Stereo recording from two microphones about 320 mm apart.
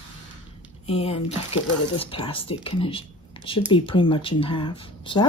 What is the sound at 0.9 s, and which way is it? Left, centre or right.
Speech, centre.